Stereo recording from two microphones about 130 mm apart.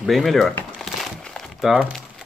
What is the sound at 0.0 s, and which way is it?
Speech, centre (ahead or behind).